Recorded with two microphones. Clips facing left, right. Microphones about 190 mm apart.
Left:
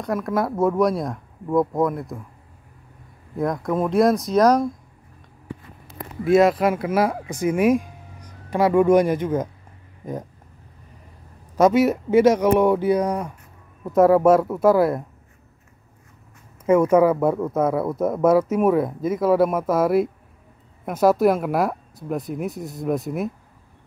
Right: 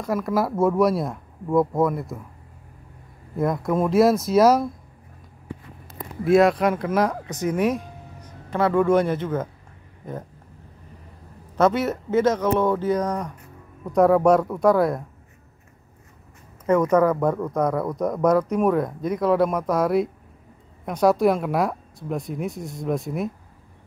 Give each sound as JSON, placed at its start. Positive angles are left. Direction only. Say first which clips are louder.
{"t": 0.0, "sound": "speech", "louder": "even", "side_deg": 0}
{"t": 3.3, "sound": "speech", "louder": "even", "side_deg": 0}
{"t": 6.2, "sound": "speech", "louder": "left 1 dB", "side_deg": 0}
{"t": 11.5, "sound": "speech", "louder": "left 4 dB", "side_deg": 10}
{"t": 16.6, "sound": "speech", "louder": "left 2 dB", "side_deg": 10}